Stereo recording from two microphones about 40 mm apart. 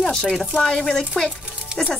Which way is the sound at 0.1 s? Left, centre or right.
Centre.